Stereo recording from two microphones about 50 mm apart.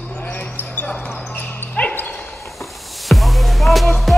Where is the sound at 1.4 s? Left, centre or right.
Left.